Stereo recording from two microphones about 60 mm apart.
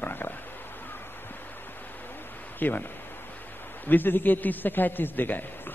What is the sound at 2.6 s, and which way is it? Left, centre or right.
Speech, left.